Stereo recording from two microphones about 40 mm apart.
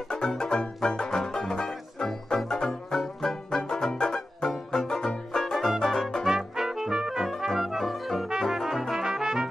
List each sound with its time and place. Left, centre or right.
0.2 s music: centre
5.8 s brass instrument: centre
6.2 s brass instrument: centre
8.9 s music: centre